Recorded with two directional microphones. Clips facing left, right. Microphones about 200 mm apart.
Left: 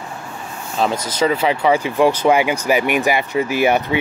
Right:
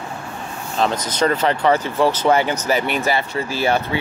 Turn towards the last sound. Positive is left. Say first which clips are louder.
# left 4 dB
turn(degrees=15)  # may be behind; listen again after turning